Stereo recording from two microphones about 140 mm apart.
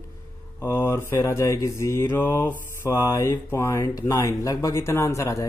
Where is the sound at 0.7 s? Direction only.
20° left (ahead or behind).